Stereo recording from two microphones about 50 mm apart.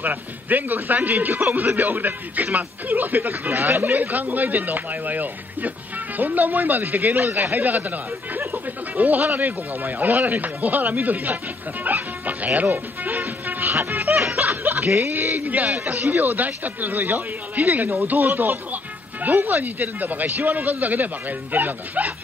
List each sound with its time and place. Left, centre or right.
0.0 s speech: right
8.9 s speech: right
13.0 s music: right
14.3 s snicker: right
15.0 s speech: right
15.3 s speech: right